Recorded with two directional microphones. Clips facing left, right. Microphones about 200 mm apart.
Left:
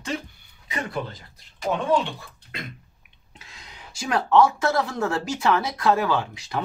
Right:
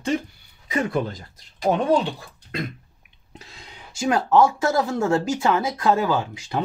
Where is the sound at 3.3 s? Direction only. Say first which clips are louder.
Right 4 dB; 35° right (ahead or behind).